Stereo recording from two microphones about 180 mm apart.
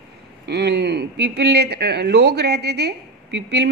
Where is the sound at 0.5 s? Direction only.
70° right (ahead or behind).